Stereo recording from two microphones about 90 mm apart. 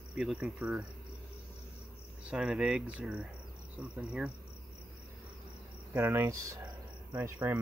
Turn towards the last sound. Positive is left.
turn(degrees=-25)  # may be behind; listen again after turning